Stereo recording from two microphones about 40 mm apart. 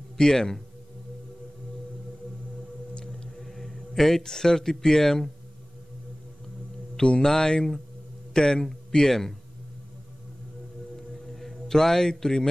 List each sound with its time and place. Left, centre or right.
0.2 s speech: centre
2.9 s music: left
3.3 s speech: centre
7.0 s speech: left
11.3 s a man's voice: centre